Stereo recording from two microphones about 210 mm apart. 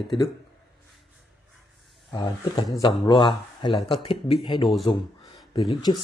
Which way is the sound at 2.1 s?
20° left (ahead or behind).